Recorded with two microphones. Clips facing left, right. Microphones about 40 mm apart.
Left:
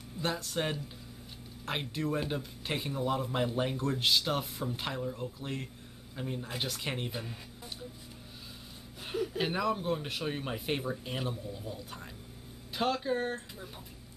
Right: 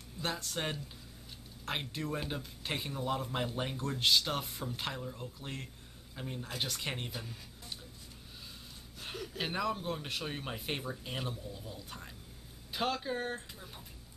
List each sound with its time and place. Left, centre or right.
0.2 s speech: centre
7.1 s speech: centre
9.0 s a sound: centre
9.4 s speech: centre